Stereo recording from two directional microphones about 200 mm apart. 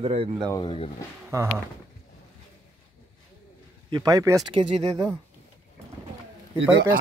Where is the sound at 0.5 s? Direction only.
25° left (ahead or behind).